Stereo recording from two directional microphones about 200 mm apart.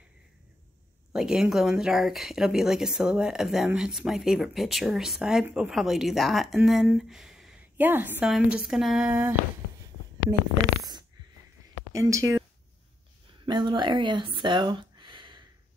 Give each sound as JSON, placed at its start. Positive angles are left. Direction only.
{"t": 1.1, "sound": "speech", "side_deg": 0}
{"t": 11.9, "sound": "speech", "side_deg": -15}
{"t": 13.5, "sound": "speech", "side_deg": -25}